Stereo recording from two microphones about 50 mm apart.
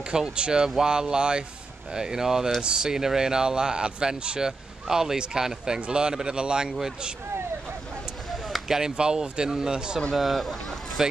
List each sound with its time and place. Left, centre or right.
0.1 s speech: centre
8.5 s speech: centre
10.1 s speech: centre